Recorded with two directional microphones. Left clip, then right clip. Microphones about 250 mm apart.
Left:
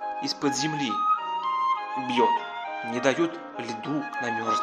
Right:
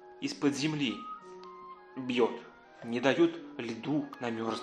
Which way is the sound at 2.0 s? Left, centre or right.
Centre.